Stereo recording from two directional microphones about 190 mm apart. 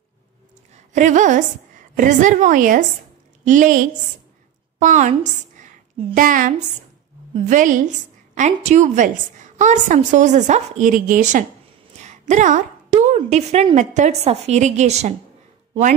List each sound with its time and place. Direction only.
0.9 s a woman's voice: 40° right (ahead or behind)
4.7 s a sound: 40° right (ahead or behind)
6.1 s a woman's voice: 45° right (ahead or behind)